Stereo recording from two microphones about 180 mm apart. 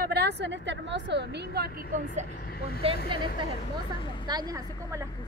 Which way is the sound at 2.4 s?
55° left (ahead or behind).